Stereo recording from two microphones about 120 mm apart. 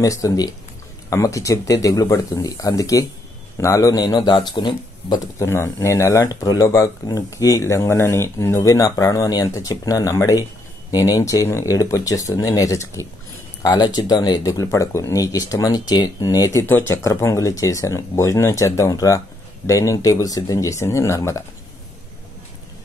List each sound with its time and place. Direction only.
0.0 s speech: 30° left (ahead or behind)
5.4 s speech: 20° left (ahead or behind)
14.5 s speech: 25° left (ahead or behind)
16.6 s speech: 20° left (ahead or behind)